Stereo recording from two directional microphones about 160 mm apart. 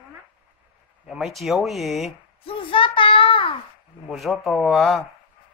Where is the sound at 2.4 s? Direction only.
35° left (ahead or behind).